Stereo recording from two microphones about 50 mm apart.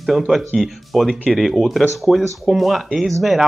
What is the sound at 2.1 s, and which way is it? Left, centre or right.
Speech, centre.